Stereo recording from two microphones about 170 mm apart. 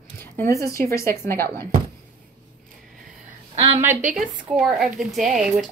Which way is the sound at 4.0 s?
50° right (ahead or behind).